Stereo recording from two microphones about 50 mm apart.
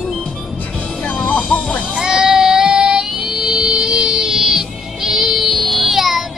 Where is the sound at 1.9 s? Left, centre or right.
Centre.